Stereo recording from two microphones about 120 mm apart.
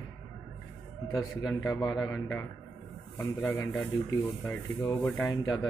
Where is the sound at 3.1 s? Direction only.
20° left (ahead or behind).